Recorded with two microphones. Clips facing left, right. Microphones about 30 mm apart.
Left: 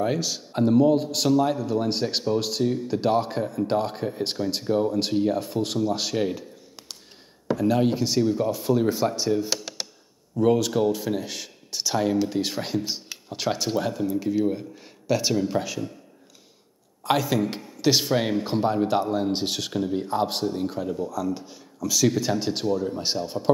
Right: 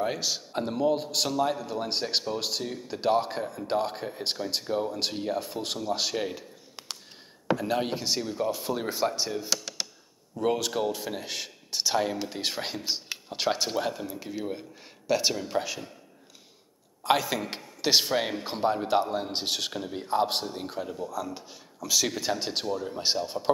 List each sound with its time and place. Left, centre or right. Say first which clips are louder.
0.0 s speech: left 4 dB; centre
6.8 s a sound: right 3 dB; right
7.5 s speech: left 6 dB; centre
9.5 s a sound: left 1 dB; centre
10.4 s speech: left 6 dB; centre
17.0 s a man's voice: left 3 dB; centre